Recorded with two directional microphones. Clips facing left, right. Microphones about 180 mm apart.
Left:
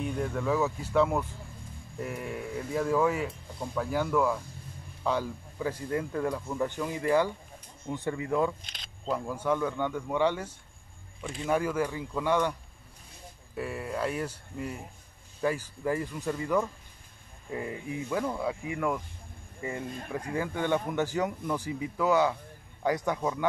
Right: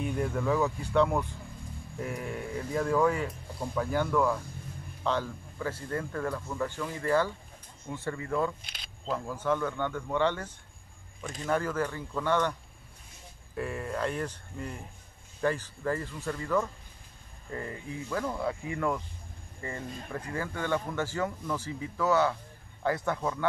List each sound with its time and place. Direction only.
0.0 s speech: centre (ahead or behind); by 8.5 s 15° left (ahead or behind)
8.6 s a sound: 10° right (ahead or behind)
9.0 s speech: 10° left (ahead or behind)
13.6 s speech: 5° left (ahead or behind)